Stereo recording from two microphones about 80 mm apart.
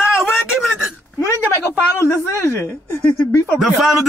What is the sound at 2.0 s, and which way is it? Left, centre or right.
Speech, left.